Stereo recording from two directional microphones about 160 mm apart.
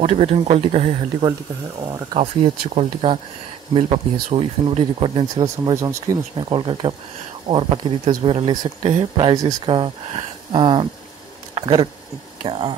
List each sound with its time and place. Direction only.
0.0 s speech: 40° right (ahead or behind)
2.1 s speech: 40° right (ahead or behind); by 6.1 s 20° right (ahead or behind)
6.3 s speech: 30° right (ahead or behind)